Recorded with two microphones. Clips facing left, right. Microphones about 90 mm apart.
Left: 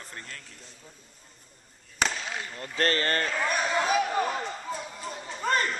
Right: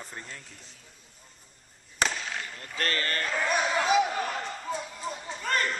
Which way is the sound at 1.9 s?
Centre (ahead or behind).